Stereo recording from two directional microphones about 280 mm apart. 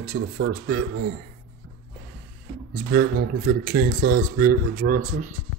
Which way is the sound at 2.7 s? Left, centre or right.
Right.